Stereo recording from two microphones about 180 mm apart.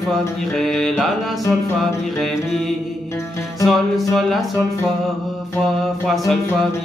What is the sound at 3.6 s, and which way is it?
Speech, centre (ahead or behind).